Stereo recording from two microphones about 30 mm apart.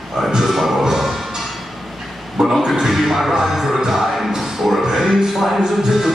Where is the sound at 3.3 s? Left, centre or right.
Centre.